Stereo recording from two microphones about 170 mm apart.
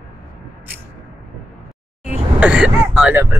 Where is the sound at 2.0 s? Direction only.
5° right (ahead or behind).